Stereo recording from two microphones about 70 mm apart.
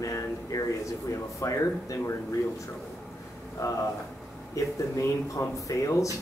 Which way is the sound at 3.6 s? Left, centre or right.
Left.